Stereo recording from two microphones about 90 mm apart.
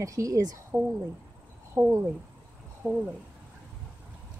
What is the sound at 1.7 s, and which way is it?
Speech, 30° right (ahead or behind).